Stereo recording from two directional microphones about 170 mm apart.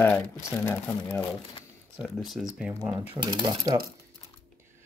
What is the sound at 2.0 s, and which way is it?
Speech, centre (ahead or behind).